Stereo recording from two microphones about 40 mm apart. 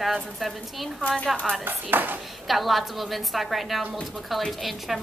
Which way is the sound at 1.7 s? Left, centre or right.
Right.